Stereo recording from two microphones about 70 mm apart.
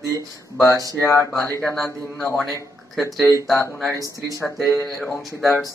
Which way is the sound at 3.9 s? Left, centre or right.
Right.